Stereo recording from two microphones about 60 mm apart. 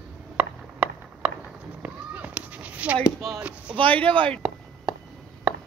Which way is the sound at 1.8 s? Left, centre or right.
Right.